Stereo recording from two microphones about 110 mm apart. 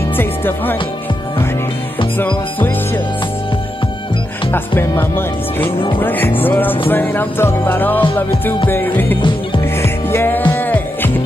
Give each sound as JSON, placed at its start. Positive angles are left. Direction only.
{"t": 0.2, "sound": "speech", "side_deg": 20}
{"t": 2.1, "sound": "music", "side_deg": 15}
{"t": 4.5, "sound": "speech", "side_deg": 20}
{"t": 5.9, "sound": "music", "side_deg": 15}
{"t": 6.4, "sound": "speech", "side_deg": 20}
{"t": 9.8, "sound": "music", "side_deg": 20}